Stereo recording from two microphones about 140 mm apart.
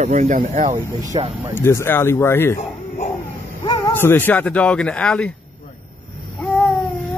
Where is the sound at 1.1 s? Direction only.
35° right (ahead or behind).